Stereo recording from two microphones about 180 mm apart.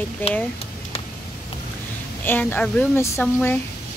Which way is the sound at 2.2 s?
10° left (ahead or behind).